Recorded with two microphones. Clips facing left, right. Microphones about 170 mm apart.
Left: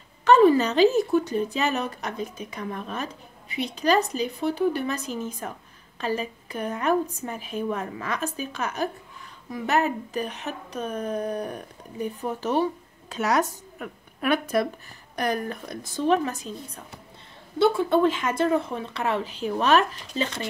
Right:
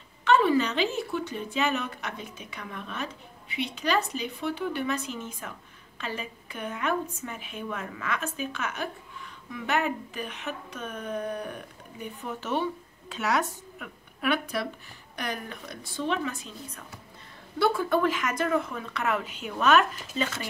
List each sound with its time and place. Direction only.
0.2 s a woman's voice: 40° left (ahead or behind)
17.6 s speech: 25° left (ahead or behind)